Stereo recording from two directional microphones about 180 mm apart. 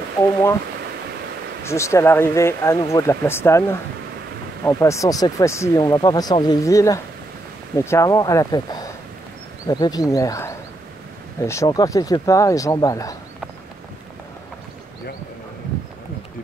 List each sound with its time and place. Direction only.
1.6 s speech: 15° left (ahead or behind)